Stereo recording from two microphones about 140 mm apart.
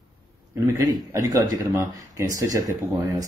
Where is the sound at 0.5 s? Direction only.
20° right (ahead or behind).